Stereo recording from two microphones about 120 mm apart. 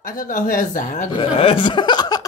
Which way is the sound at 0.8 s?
90° left.